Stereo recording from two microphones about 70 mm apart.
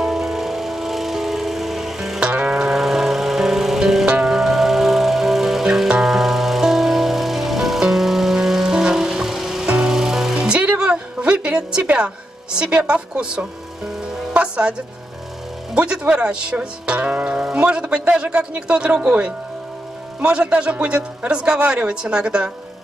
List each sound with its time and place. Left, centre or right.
0.0 s music: centre
10.8 s a sound: centre
12.5 s a woman's voice: centre